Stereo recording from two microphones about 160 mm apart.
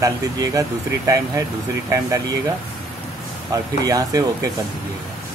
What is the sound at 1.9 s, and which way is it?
Speech, 20° right (ahead or behind).